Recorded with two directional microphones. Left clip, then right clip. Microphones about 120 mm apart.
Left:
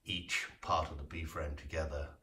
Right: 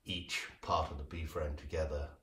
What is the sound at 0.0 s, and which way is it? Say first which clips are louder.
Speech: left 2 dB; 30° right (ahead or behind).